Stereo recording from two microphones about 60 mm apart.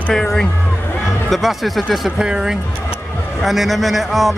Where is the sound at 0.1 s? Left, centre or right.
Centre.